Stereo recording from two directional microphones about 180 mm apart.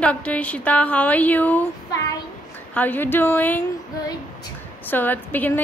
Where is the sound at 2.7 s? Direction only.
10° left (ahead or behind).